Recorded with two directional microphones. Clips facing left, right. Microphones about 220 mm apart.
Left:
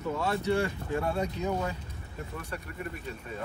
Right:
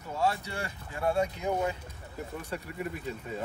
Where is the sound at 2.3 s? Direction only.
15° right (ahead or behind).